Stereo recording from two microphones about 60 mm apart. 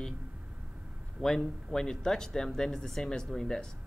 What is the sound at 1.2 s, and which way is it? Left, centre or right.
Speech, centre.